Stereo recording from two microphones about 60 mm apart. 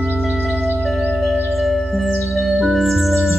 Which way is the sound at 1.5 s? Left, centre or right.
Centre.